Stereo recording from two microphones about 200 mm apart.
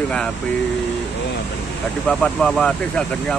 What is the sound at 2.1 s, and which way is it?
Speech, 5° left (ahead or behind).